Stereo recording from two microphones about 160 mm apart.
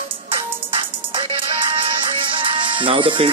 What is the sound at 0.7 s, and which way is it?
Music, 30° right (ahead or behind).